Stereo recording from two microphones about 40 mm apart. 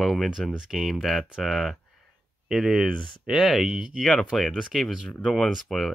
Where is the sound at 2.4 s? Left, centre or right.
Centre.